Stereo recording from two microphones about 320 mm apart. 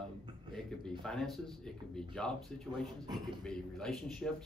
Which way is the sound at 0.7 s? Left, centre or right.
Centre.